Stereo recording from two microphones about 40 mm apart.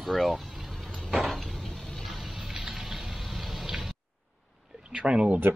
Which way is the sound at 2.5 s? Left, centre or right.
Centre.